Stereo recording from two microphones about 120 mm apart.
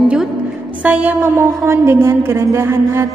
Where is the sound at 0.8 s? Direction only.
15° right (ahead or behind).